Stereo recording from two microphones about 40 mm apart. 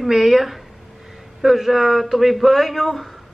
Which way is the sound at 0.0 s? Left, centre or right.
Centre.